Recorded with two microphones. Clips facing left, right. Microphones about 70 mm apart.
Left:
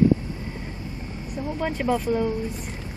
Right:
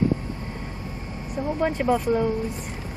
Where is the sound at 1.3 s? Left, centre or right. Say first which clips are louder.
Right 3 dB; centre.